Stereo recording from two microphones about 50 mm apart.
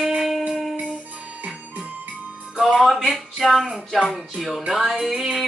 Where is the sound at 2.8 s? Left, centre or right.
Centre.